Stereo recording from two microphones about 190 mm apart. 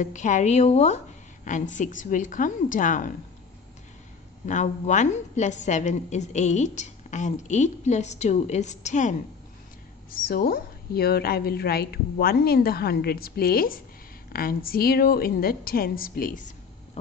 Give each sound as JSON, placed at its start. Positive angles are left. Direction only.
{"t": 0.0, "sound": "a woman's voice", "side_deg": 40}
{"t": 4.5, "sound": "a woman's voice", "side_deg": 40}
{"t": 10.2, "sound": "a woman's voice", "side_deg": 50}